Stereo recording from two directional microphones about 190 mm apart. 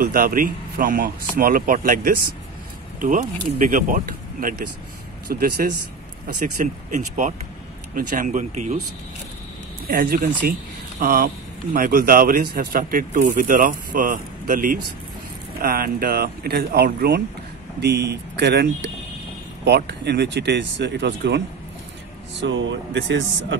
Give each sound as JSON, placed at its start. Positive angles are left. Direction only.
{"t": 0.0, "sound": "speech", "side_deg": -45}
{"t": 9.8, "sound": "speech", "side_deg": -50}
{"t": 22.4, "sound": "speech", "side_deg": -75}